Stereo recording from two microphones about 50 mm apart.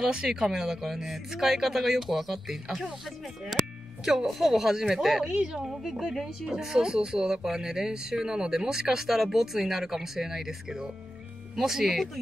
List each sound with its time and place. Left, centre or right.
0.0 s speech: centre
5.3 s a woman's voice: right
5.6 s speech: centre